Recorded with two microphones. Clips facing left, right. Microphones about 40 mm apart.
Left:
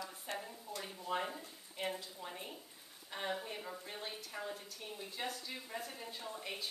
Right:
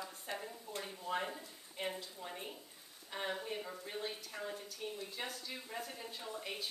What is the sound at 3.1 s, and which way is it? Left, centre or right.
A woman's voice, centre.